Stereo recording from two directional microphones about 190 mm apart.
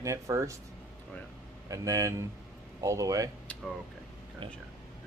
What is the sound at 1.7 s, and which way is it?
Speech, 15° right (ahead or behind).